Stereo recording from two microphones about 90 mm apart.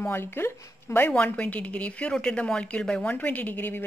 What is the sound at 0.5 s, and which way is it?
Speech, 35° left (ahead or behind).